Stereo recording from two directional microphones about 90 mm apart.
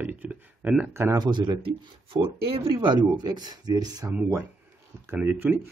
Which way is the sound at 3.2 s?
50° right (ahead or behind).